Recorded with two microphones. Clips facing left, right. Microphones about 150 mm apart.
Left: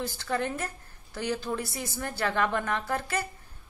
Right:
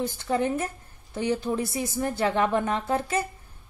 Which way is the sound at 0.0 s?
20° right (ahead or behind).